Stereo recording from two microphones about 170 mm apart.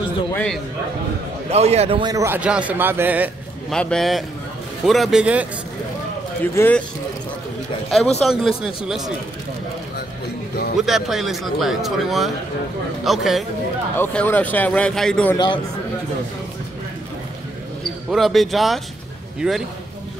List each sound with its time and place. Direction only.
0.3 s a man's voice: 5° left (ahead or behind)
1.5 s a man's voice: 40° right (ahead or behind)
2.1 s a man's voice: 15° right (ahead or behind)
3.7 s speech: 5° left (ahead or behind)
6.4 s a man's voice: 10° left (ahead or behind)
8.2 s speech: centre (ahead or behind)
10.8 s speech: centre (ahead or behind)
13.9 s a man's voice: 10° left (ahead or behind)
15.3 s speech: 25° left (ahead or behind)
18.1 s speech: centre (ahead or behind)